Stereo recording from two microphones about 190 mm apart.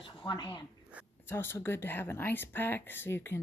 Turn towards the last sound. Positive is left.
turn(degrees=10)  # may be behind; listen again after turning